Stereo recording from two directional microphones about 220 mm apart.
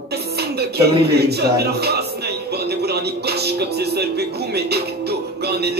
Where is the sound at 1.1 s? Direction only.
45° right (ahead or behind).